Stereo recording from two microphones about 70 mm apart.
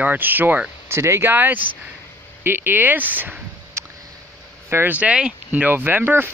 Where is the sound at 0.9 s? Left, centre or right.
Right.